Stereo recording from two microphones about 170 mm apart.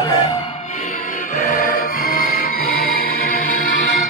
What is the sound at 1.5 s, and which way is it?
Music, 55° left (ahead or behind).